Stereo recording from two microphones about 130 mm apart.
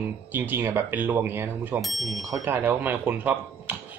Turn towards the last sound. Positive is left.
turn(degrees=-15)  # may be behind; listen again after turning